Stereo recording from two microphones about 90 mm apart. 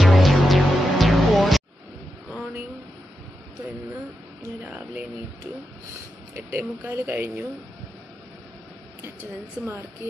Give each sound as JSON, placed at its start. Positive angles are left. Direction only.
{"t": 0.0, "sound": "music", "side_deg": 0}
{"t": 4.6, "sound": "a sound", "side_deg": -20}
{"t": 6.3, "sound": "speech", "side_deg": -20}
{"t": 9.0, "sound": "speech", "side_deg": -25}